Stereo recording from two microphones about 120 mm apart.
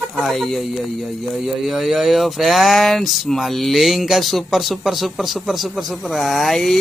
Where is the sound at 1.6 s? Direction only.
Centre (ahead or behind).